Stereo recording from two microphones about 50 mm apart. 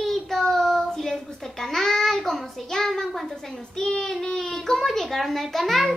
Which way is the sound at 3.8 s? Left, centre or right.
Centre.